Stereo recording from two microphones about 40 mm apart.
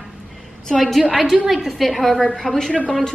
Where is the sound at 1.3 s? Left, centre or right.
Centre.